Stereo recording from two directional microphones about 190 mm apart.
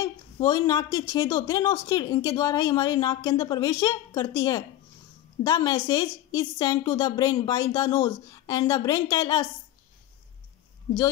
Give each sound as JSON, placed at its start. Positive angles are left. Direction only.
{"t": 0.0, "sound": "speech", "side_deg": 20}